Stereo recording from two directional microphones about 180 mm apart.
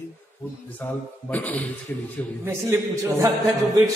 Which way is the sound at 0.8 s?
10° left (ahead or behind).